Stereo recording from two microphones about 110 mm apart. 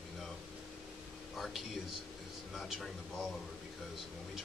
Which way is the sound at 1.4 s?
Centre (ahead or behind).